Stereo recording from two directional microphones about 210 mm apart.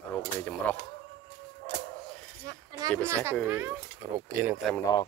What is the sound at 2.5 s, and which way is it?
Speech, 15° right (ahead or behind).